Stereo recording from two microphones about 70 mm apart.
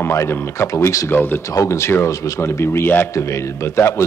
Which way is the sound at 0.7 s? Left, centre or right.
Left.